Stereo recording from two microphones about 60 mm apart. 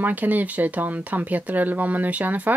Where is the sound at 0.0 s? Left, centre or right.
Right.